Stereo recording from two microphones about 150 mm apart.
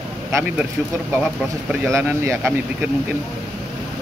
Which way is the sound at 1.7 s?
15° right (ahead or behind).